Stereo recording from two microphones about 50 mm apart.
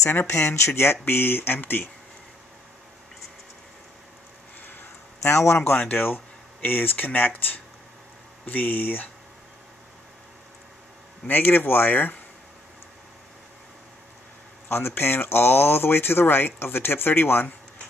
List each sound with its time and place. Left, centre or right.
0.3 s speech: left
1.0 s speech: left
4.6 s a sound: left
5.2 s a man's voice: left
5.7 s speech: left
11.2 s speech: left
14.7 s speech: left